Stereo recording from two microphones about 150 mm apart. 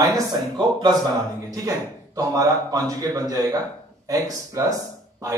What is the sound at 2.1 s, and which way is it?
Speech, 20° right (ahead or behind).